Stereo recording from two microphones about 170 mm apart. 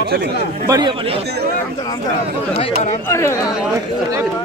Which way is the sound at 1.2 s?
75° right (ahead or behind).